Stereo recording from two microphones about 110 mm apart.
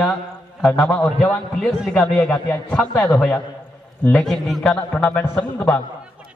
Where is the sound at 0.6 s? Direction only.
10° left (ahead or behind).